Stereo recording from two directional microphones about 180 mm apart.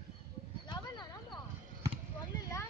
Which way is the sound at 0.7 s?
25° left (ahead or behind).